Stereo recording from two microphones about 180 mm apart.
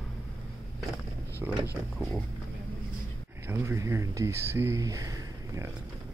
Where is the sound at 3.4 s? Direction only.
15° right (ahead or behind).